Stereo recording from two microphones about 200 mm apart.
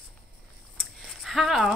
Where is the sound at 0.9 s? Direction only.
Centre (ahead or behind).